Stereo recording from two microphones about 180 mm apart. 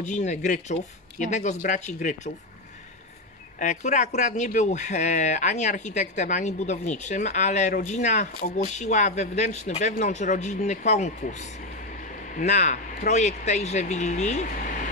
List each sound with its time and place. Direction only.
0.0 s speech: 40° left (ahead or behind)
3.5 s speech: 40° left (ahead or behind)